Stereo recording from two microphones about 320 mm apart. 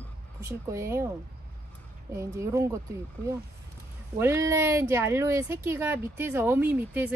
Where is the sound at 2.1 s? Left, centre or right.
Centre.